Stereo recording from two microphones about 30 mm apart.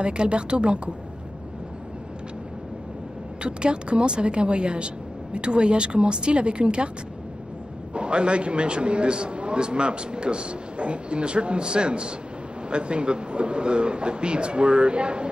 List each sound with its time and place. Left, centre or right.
0.0 s a man's voice: right
3.4 s a man's voice: right
7.9 s a man's voice: right